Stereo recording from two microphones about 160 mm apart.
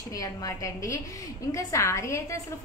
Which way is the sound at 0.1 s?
20° left (ahead or behind).